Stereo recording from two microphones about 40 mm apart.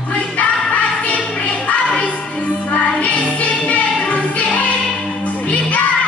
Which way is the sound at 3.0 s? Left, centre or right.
Left.